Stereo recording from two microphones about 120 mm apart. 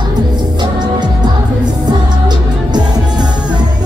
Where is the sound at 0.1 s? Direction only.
35° right (ahead or behind).